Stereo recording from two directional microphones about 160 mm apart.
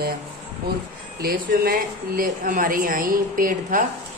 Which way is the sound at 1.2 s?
70° right (ahead or behind).